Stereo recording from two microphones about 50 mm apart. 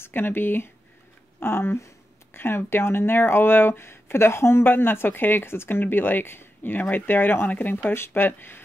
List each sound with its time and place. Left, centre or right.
0.0 s speech: left